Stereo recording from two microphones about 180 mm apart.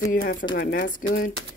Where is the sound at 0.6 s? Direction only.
50° left (ahead or behind).